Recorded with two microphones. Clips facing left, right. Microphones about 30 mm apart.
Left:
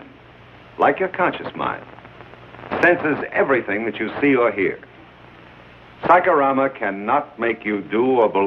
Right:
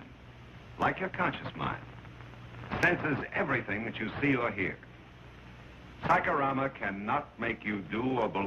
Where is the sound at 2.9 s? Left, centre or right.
Left.